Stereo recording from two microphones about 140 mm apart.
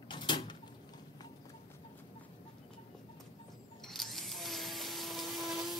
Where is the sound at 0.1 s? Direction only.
35° left (ahead or behind).